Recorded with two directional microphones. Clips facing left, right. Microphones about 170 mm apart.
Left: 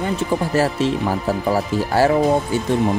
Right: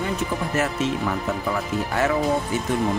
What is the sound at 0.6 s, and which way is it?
Speech, 30° left (ahead or behind).